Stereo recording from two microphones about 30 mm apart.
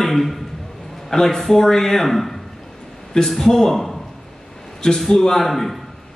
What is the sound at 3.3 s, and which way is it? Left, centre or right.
Speech, centre.